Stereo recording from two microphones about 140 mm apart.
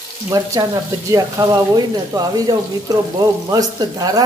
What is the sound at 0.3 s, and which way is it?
Speech, 25° right (ahead or behind).